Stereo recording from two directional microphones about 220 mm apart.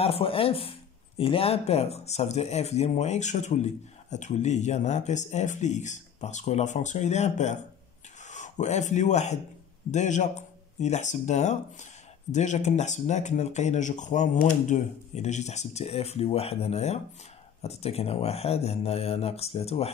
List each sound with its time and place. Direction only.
0.0 s speech: 25° left (ahead or behind)